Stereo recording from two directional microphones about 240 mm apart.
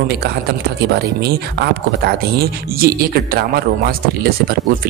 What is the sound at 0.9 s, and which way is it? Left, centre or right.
Speech, right.